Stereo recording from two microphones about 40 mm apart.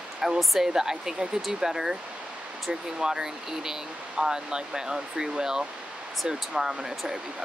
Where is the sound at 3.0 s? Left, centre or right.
Centre.